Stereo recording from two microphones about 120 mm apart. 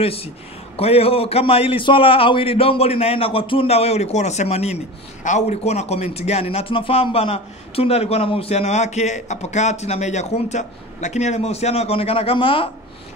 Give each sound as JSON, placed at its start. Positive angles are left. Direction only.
{"t": 0.0, "sound": "a man's voice", "side_deg": 55}